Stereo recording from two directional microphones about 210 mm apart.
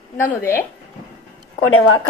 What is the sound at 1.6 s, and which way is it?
Speech, 75° left (ahead or behind).